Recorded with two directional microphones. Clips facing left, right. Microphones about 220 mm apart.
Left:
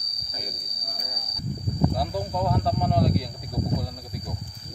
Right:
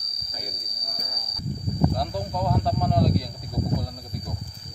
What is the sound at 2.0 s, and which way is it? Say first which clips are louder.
Speech: left 1 dB; 5° left (ahead or behind).